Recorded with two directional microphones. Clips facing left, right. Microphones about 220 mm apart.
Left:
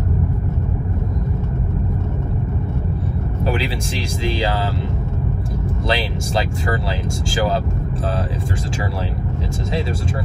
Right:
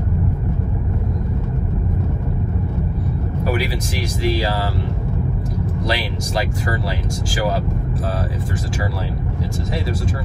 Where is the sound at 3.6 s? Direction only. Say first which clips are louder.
Even; 30° left (ahead or behind).